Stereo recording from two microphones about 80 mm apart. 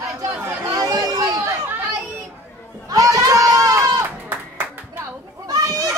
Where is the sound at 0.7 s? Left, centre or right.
Right.